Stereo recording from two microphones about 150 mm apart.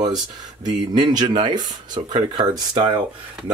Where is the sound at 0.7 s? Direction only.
30° right (ahead or behind).